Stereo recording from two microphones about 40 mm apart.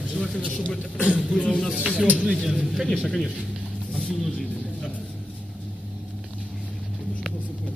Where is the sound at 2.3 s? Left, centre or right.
Centre.